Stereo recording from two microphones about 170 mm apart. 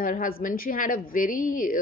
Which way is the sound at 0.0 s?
55° left (ahead or behind).